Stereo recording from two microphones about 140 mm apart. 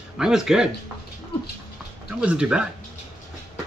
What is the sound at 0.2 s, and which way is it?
Speech, 5° right (ahead or behind).